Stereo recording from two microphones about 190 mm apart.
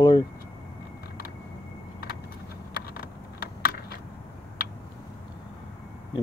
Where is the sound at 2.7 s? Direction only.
55° left (ahead or behind).